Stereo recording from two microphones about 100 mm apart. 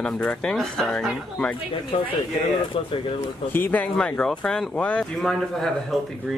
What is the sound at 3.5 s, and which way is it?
Speech, 20° left (ahead or behind).